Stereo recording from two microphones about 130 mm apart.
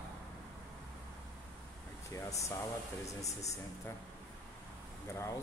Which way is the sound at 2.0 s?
25° left (ahead or behind).